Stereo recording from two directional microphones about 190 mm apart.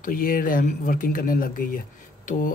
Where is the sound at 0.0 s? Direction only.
45° left (ahead or behind).